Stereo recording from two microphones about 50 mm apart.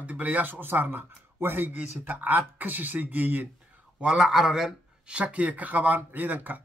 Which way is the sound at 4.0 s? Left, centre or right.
Centre.